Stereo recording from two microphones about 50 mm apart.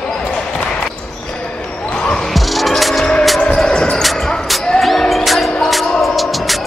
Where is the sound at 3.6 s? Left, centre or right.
Centre.